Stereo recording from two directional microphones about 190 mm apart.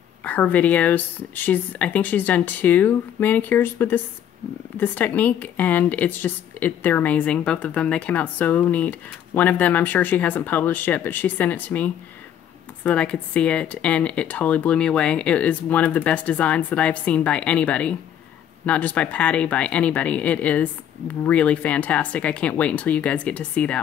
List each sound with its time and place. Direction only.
0.2 s speech: 10° left (ahead or behind)